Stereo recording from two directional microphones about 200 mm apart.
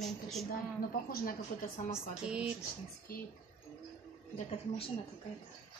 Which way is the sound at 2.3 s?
5° right (ahead or behind).